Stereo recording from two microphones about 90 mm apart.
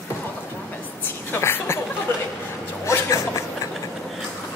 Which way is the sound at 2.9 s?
30° left (ahead or behind).